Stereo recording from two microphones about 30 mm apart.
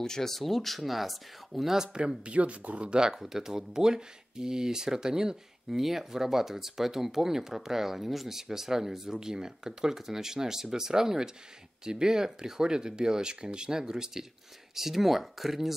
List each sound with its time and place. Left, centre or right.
0.0 s speech: left
0.3 s speech: centre
2.0 s speech: right
2.3 s speech: right
3.0 s speech: centre
5.8 s speech: centre
14.8 s speech: centre